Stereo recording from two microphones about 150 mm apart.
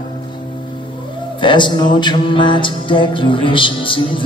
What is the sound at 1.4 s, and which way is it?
Music, 30° left (ahead or behind).